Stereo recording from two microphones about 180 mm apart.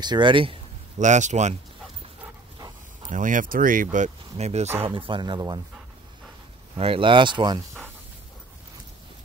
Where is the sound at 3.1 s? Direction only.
45° right (ahead or behind); by 5.6 s 25° right (ahead or behind).